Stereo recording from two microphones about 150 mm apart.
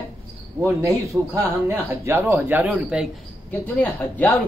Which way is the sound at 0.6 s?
20° right (ahead or behind).